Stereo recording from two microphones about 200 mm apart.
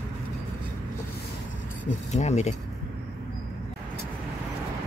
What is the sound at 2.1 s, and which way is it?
Speech, 35° left (ahead or behind).